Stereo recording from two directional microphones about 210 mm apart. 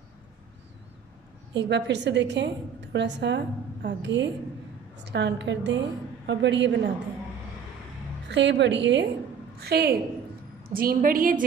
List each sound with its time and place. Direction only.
1.5 s a woman's voice: 55° right (ahead or behind)
8.3 s a woman's voice: 55° right (ahead or behind); by 11.4 s 40° right (ahead or behind)